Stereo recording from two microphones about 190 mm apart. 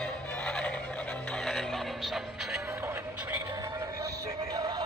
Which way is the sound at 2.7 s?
15° right (ahead or behind).